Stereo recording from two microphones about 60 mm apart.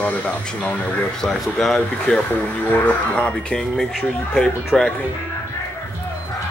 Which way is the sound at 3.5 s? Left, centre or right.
Centre.